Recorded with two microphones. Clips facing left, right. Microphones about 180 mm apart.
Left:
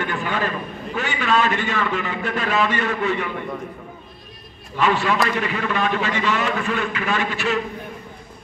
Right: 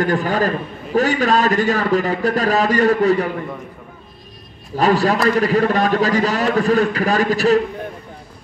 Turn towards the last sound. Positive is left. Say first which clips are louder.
# right 8 dB
turn(degrees=-40)  # may be behind; listen again after turning